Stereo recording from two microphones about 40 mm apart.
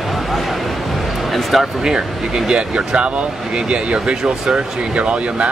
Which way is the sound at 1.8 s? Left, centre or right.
Centre.